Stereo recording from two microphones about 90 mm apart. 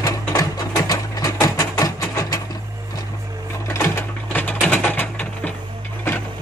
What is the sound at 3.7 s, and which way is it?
Sewing machine, 20° left (ahead or behind).